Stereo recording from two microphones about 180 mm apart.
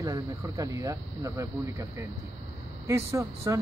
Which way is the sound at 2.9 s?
15° right (ahead or behind).